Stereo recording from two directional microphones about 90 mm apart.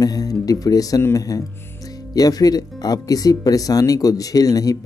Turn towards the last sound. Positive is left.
turn(degrees=45)  # may be behind; listen again after turning